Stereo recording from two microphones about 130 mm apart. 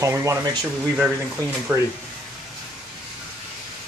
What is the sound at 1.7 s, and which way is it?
Speech, 5° right (ahead or behind).